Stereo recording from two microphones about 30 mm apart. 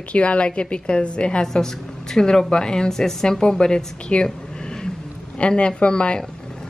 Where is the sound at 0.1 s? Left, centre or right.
Left.